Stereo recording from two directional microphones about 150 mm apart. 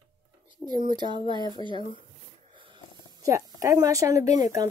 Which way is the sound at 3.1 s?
25° right (ahead or behind).